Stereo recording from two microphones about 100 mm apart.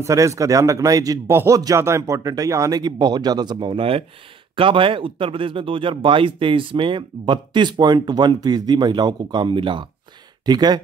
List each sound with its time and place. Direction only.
0.0 s speech: 30° right (ahead or behind)
1.3 s speech: 25° right (ahead or behind); by 9.8 s 55° right (ahead or behind)
10.4 s speech: 45° right (ahead or behind)